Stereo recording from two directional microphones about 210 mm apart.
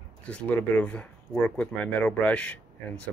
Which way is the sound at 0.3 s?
10° left (ahead or behind).